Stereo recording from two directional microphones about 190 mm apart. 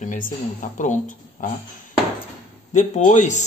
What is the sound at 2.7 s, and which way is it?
Speech, 40° left (ahead or behind).